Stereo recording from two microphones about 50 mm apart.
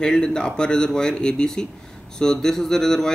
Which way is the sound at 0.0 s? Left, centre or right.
Centre.